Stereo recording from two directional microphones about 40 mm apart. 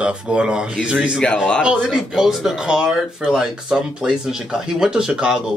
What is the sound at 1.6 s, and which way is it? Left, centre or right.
Speech, centre.